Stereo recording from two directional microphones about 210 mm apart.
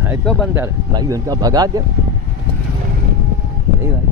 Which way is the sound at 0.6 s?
15° right (ahead or behind).